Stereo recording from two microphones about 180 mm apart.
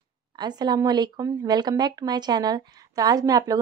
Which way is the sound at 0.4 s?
25° right (ahead or behind).